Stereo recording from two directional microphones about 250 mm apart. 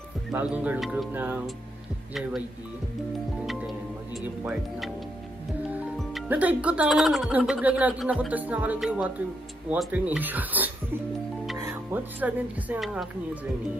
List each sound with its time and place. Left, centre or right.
0.3 s speech: centre
4.2 s speech: centre